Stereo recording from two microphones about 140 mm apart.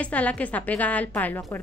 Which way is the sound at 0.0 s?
10° left (ahead or behind).